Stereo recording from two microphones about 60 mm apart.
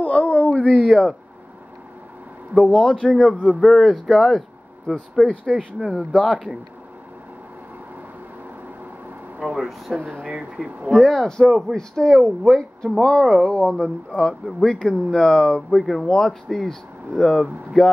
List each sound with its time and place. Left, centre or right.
0.0 s a sound: left
0.8 s speech: centre
2.7 s speech: centre
4.0 s a sound: centre
5.2 s speech: centre
9.6 s speech: centre
9.9 s speech: right
10.3 s speech: centre
10.9 s speech: centre
14.4 s speech: centre
14.8 s speech: centre